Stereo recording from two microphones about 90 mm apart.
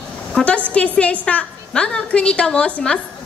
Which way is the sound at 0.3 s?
10° left (ahead or behind).